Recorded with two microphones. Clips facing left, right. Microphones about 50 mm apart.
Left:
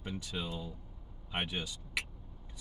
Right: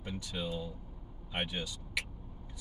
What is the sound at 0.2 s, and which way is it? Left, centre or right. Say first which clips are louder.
Speech: right 2 dB; centre.